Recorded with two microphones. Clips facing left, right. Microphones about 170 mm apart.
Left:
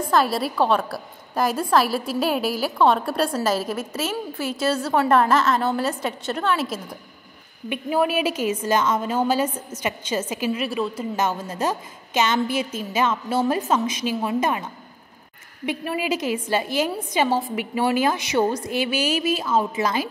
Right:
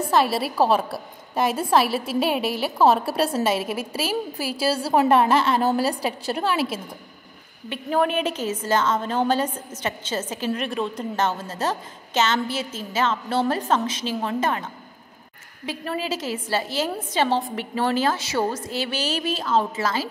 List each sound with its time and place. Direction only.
0.1 s a woman's voice: 5° right (ahead or behind)
4.6 s a woman's voice: 30° right (ahead or behind)
7.7 s a woman's voice: 5° left (ahead or behind)
15.6 s a woman's voice: 15° left (ahead or behind)